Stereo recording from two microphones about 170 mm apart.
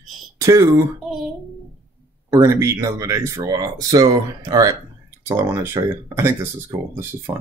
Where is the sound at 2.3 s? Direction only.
15° right (ahead or behind).